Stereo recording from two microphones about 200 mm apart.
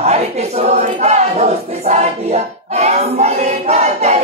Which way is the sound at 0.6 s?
35° right (ahead or behind).